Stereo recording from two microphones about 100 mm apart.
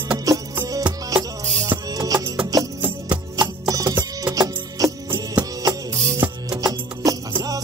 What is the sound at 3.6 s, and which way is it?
Music, 35° right (ahead or behind).